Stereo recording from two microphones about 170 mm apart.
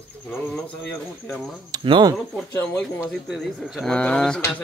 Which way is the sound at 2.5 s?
10° left (ahead or behind).